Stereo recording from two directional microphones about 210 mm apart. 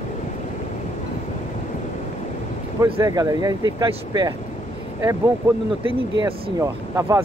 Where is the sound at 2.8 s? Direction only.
15° right (ahead or behind).